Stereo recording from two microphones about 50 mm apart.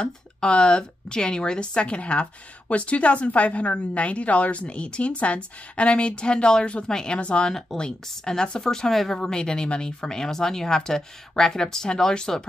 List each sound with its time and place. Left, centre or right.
0.0 s a woman's voice: centre